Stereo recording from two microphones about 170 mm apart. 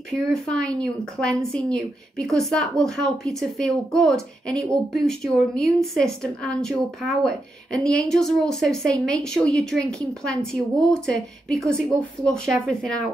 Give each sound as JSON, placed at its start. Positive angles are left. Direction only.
{"t": 0.1, "sound": "speech", "side_deg": 5}